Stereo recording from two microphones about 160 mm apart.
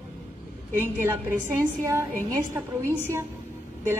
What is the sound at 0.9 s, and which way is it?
A woman's voice, 15° right (ahead or behind).